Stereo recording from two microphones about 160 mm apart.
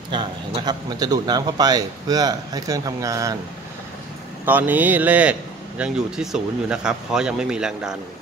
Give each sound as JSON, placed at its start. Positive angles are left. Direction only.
{"t": 0.1, "sound": "a man's voice", "side_deg": -30}
{"t": 4.5, "sound": "speech", "side_deg": -10}